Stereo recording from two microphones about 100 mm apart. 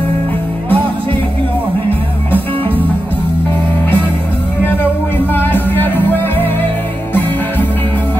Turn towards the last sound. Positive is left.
turn(degrees=20)  # may be behind; listen again after turning